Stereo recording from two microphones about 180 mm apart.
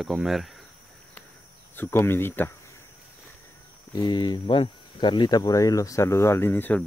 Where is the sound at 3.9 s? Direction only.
25° left (ahead or behind).